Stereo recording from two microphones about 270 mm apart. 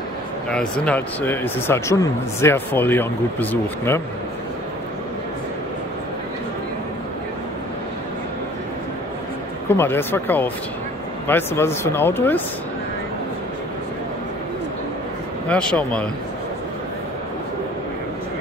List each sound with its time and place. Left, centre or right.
0.5 s speech: centre
9.8 s speech: centre
15.4 s speech: centre